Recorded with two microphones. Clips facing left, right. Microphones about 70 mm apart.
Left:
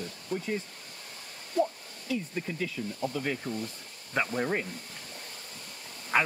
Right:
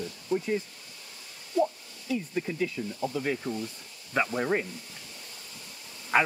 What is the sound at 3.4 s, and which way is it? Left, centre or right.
Speech, left.